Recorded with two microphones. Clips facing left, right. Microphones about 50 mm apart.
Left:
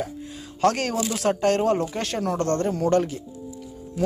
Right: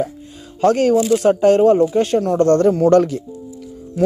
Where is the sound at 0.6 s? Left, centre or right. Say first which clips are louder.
Right 8 dB; centre.